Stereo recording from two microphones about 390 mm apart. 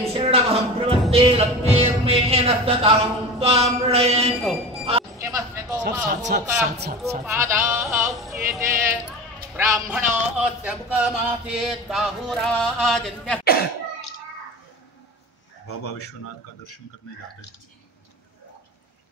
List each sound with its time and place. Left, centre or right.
0.0 s speech: centre
4.4 s speech: centre
4.8 s music: centre
6.0 s speech: right
7.2 s music: centre
13.4 s cough: left
15.6 s speech: left